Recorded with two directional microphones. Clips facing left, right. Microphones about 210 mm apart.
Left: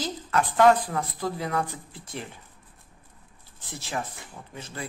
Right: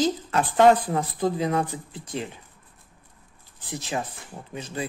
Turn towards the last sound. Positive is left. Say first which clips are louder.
# right 6 dB
turn(degrees=-20)  # may be behind; listen again after turning